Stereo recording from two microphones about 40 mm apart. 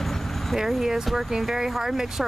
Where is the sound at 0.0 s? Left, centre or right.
Centre.